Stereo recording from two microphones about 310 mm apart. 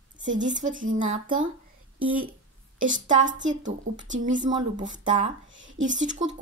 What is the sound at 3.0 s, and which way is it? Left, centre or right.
Speech, right.